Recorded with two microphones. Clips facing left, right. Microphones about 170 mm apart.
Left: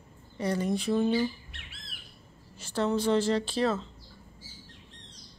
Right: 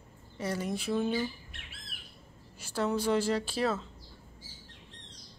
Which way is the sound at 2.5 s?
10° right (ahead or behind).